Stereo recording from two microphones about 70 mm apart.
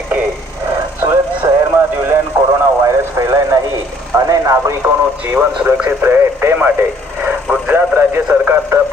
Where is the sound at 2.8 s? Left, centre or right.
Right.